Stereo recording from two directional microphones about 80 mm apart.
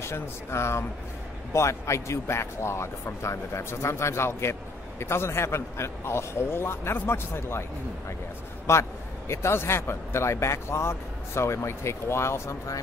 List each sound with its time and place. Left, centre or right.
0.1 s a man's voice: left
8.7 s a man's voice: left